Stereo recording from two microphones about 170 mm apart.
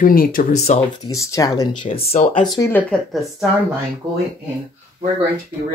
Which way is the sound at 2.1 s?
45° left (ahead or behind).